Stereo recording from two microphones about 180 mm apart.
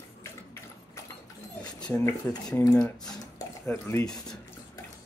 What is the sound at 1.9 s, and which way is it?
Speech, 15° left (ahead or behind).